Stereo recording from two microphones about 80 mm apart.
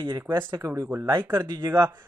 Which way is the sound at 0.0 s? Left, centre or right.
Right.